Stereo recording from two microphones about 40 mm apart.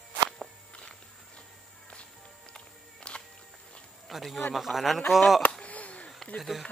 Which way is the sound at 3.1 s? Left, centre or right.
Left.